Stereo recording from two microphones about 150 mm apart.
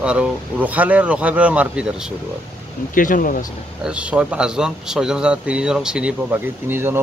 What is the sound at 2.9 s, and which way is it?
Speech, 65° left (ahead or behind).